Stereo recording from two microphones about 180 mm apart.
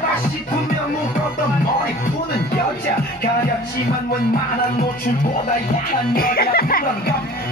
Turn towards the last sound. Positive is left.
turn(degrees=55)  # may be behind; listen again after turning